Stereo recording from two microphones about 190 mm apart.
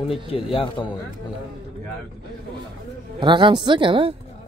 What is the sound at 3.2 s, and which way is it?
Speech, 25° right (ahead or behind).